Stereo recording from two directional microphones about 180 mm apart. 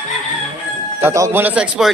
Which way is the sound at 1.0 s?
15° right (ahead or behind).